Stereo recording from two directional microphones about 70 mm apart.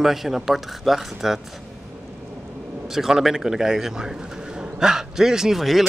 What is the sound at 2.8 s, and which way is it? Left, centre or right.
Speech, centre.